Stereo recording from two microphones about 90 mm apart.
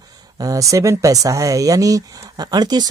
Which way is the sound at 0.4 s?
40° right (ahead or behind).